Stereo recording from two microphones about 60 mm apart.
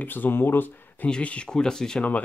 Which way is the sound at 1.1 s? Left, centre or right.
Centre.